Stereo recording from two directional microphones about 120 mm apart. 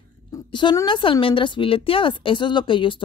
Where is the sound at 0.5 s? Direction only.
40° left (ahead or behind).